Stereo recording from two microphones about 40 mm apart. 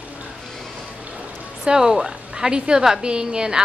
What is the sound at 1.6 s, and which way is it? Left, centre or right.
A woman's voice, centre.